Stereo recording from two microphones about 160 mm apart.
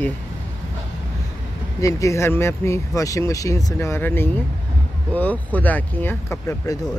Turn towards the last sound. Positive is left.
turn(degrees=20)  # may be behind; listen again after turning